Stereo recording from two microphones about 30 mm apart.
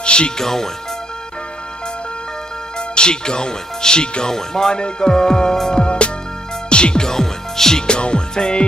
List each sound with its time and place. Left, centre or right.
0.0 s music: left
0.4 s speech: centre
2.9 s speech: left
4.3 s speech: centre
4.7 s music: left
5.1 s music: centre
7.1 s music: centre
7.8 s music: left